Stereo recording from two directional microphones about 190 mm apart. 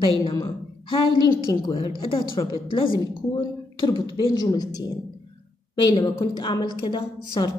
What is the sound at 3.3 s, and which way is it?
A woman's voice, 20° left (ahead or behind).